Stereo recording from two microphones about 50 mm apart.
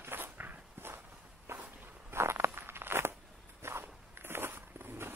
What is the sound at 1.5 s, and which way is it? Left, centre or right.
Walk, right.